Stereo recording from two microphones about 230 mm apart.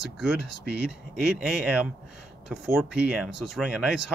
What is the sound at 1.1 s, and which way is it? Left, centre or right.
Speech, centre.